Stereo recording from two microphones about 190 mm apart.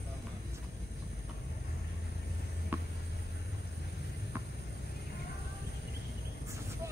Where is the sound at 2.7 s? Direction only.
10° right (ahead or behind).